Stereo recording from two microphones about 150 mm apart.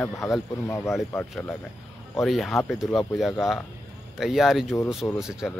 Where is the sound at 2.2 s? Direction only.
Centre (ahead or behind).